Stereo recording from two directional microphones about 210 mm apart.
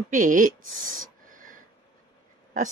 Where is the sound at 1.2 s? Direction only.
40° right (ahead or behind).